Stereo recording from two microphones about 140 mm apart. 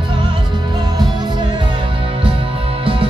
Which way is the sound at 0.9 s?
30° right (ahead or behind).